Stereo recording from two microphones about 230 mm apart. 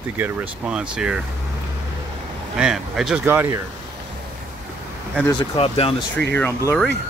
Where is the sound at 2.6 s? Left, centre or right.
Centre.